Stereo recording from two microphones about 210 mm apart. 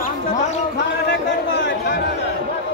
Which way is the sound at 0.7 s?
55° left (ahead or behind).